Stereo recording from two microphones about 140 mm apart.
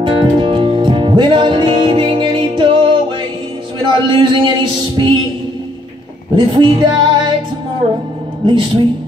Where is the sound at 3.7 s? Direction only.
35° right (ahead or behind).